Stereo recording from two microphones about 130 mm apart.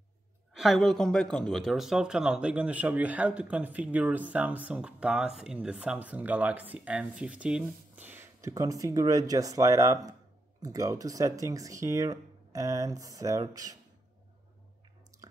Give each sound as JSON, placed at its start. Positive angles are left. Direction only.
{"t": 0.6, "sound": "speech", "side_deg": 0}